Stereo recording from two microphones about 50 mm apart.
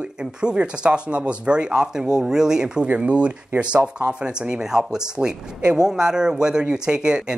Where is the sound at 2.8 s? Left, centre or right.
Right.